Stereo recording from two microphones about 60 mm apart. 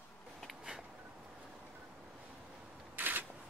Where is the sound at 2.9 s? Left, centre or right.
Right.